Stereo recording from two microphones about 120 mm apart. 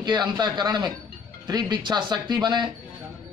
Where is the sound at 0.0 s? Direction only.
40° right (ahead or behind).